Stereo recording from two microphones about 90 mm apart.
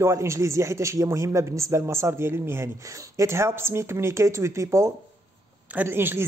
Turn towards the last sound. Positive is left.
turn(degrees=-25)  # may be behind; listen again after turning